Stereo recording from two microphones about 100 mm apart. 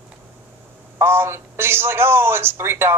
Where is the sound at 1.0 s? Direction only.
25° right (ahead or behind).